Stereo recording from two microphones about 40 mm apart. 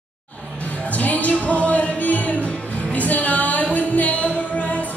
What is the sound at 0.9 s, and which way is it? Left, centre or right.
Music, left.